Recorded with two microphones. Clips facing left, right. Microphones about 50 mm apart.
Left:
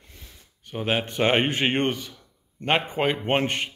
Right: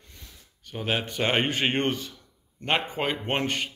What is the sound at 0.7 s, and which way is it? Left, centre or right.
A man's voice, centre.